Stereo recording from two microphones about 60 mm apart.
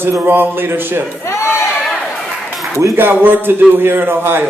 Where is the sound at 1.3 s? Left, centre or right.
Left.